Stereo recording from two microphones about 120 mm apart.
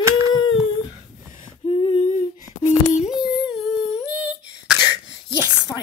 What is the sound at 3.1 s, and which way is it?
Humming, 5° right (ahead or behind).